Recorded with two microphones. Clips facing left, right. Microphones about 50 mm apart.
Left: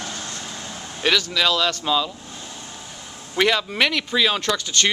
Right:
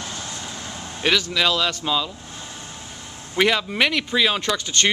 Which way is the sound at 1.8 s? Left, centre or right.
Centre.